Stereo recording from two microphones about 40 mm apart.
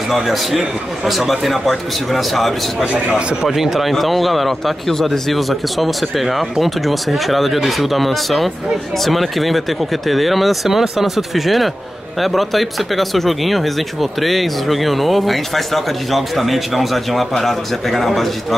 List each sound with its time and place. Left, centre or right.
0.1 s speech: centre
3.1 s speech: right
3.4 s speech: centre